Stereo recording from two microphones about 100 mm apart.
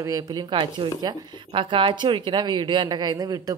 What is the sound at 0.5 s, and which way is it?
Speech, 55° right (ahead or behind).